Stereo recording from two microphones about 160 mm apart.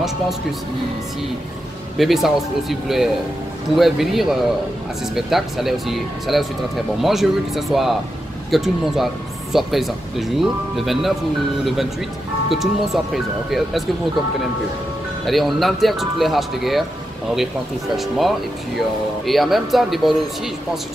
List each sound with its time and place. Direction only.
2.0 s speech: centre (ahead or behind)
15.2 s speech: centre (ahead or behind)
17.9 s speech: centre (ahead or behind)